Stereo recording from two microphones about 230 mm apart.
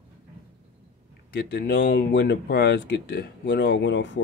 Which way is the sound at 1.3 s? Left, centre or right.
Left.